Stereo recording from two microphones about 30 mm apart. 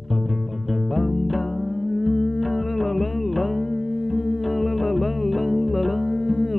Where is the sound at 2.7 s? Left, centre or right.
Centre.